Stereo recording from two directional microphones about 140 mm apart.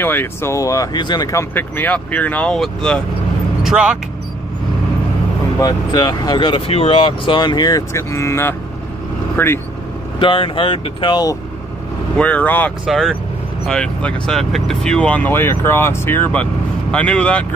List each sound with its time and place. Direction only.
0.0 s speech: 15° left (ahead or behind)
1.5 s speech: 15° left (ahead or behind)
3.6 s speech: 5° right (ahead or behind)
5.6 s speech: 30° left (ahead or behind)
10.1 s speech: 40° left (ahead or behind)
12.2 s speech: 10° left (ahead or behind)
12.8 s speech: centre (ahead or behind)